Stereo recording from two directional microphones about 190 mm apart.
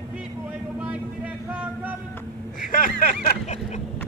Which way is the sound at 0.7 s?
5° right (ahead or behind).